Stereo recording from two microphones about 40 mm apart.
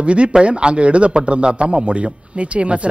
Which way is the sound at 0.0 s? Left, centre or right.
Right.